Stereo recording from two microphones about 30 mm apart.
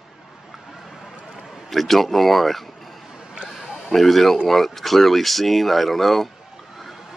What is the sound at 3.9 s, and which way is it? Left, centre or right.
A man's voice, centre.